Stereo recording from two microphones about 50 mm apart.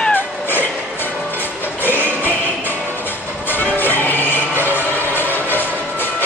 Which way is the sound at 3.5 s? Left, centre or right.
Left.